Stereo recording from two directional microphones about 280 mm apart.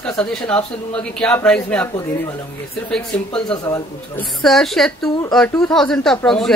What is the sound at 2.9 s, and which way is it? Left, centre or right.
A woman's voice, centre.